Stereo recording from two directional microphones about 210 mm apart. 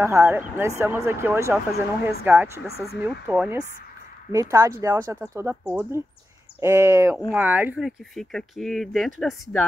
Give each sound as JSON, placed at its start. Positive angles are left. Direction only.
{"t": 0.0, "sound": "speech", "side_deg": -10}